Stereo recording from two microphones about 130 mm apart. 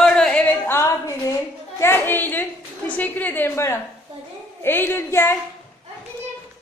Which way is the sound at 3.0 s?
15° left (ahead or behind).